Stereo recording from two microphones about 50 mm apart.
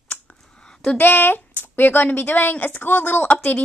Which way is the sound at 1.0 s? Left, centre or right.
Left.